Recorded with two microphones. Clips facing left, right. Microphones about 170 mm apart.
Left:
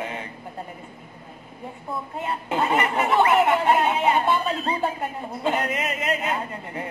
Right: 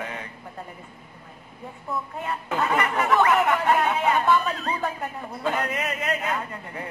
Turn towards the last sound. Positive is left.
turn(degrees=25)  # may be behind; listen again after turning